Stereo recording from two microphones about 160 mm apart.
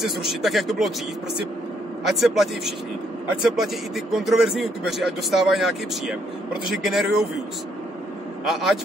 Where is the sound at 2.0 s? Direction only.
Centre (ahead or behind).